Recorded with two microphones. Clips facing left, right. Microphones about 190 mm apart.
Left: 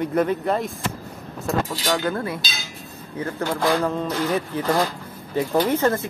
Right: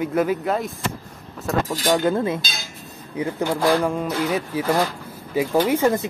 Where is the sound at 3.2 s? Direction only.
15° right (ahead or behind).